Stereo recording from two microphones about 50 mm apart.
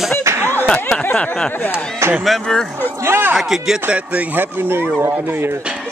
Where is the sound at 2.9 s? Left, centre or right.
Right.